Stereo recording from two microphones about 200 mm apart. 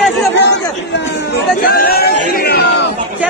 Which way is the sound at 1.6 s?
50° left (ahead or behind).